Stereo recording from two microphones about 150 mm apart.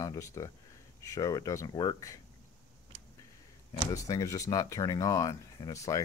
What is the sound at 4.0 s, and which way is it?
Speech, 20° left (ahead or behind).